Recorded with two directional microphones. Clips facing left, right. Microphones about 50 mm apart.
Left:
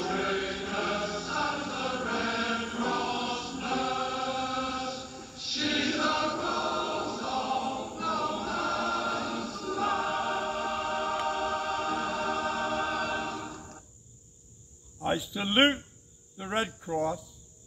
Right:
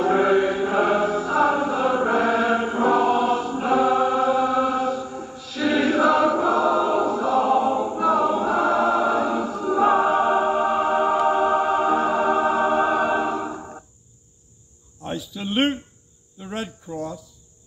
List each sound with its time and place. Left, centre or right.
0.0 s chant: centre
15.0 s cricket: centre